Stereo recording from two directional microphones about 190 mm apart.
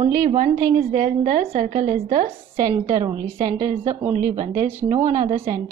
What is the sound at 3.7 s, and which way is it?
A woman's voice, 30° right (ahead or behind).